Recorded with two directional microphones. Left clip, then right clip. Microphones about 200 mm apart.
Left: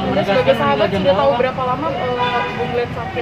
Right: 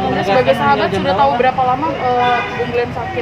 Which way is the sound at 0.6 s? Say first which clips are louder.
Right 1 dB; 55° right (ahead or behind).